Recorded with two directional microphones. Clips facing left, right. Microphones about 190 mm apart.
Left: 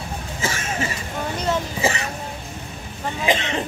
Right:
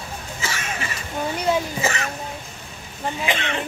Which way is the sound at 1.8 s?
30° left (ahead or behind).